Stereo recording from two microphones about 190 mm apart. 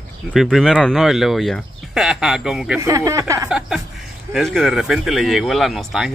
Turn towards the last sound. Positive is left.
turn(degrees=0)  # may be behind; listen again after turning